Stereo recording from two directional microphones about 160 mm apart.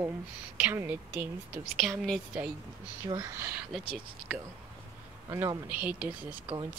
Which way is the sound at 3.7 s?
Centre (ahead or behind).